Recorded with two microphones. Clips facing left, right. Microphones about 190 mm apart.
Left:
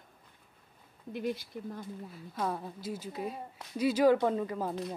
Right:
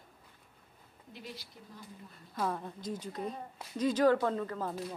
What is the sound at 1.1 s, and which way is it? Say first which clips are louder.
Speech: left 13 dB; 55° left (ahead or behind).